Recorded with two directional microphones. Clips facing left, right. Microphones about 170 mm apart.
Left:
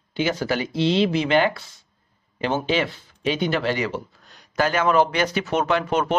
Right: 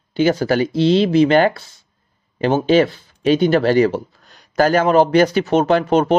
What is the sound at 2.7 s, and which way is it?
A man's voice, 40° right (ahead or behind).